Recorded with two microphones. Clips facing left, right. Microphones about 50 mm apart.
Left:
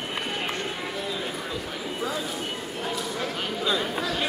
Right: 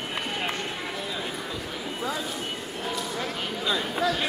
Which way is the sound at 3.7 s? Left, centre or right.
Centre.